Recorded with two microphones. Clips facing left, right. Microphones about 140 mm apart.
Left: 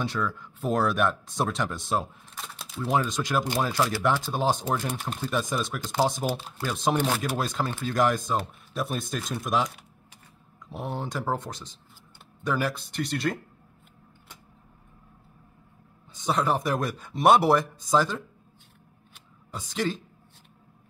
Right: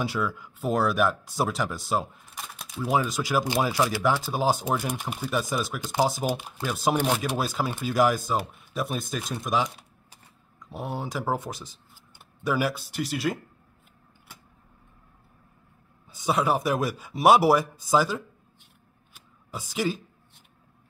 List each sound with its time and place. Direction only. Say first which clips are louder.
0.0 s speech: right 1 dB; 5° right (ahead or behind)
2.3 s speech: even; 15° right (ahead or behind)
10.7 s speech: even; centre (ahead or behind)
16.1 s speech: right 1 dB; 10° right (ahead or behind)
19.1 s a sound: right 1 dB; 10° right (ahead or behind)